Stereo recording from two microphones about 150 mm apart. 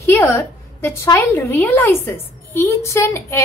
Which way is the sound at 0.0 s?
15° left (ahead or behind).